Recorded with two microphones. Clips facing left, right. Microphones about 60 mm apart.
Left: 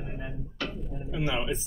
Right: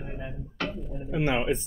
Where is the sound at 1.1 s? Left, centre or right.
Right.